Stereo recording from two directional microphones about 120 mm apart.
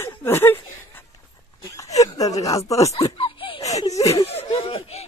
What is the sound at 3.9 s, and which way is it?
Speech, 30° left (ahead or behind).